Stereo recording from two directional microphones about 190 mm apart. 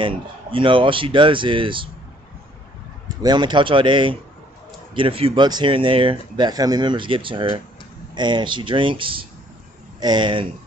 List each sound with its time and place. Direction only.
0.0 s speech: 25° right (ahead or behind)
3.2 s speech: 20° right (ahead or behind)